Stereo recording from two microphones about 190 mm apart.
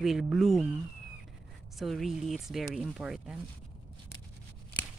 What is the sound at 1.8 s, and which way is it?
Speech, centre (ahead or behind).